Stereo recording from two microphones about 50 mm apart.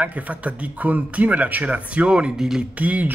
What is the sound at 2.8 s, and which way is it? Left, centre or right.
Speech, right.